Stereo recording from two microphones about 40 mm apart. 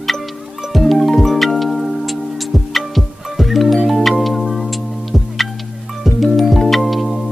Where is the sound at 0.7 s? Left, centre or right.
Centre.